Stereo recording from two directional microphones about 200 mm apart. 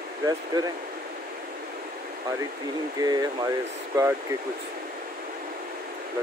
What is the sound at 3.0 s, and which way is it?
Speech, 20° right (ahead or behind).